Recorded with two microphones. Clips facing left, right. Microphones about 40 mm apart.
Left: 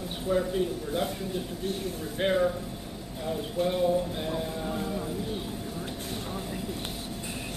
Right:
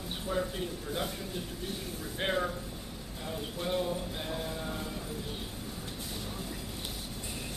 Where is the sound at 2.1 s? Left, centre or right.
Centre.